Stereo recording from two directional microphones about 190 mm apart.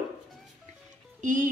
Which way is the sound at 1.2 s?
40° right (ahead or behind).